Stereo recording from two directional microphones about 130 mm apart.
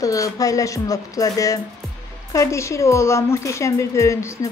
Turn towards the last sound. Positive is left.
turn(degrees=25)  # may be behind; listen again after turning